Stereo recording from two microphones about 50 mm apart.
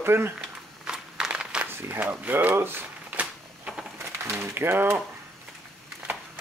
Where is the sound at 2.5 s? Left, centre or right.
Right.